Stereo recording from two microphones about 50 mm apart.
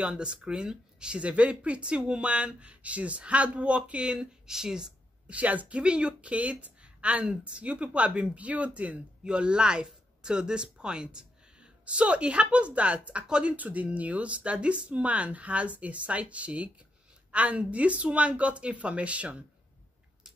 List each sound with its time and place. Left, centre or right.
0.0 s a woman's voice: centre
5.3 s a woman's voice: right